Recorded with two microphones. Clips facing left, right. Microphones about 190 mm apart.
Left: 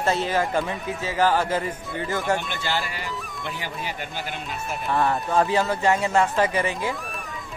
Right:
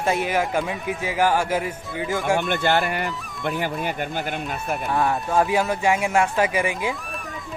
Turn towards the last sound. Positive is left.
turn(degrees=-10)  # may be behind; listen again after turning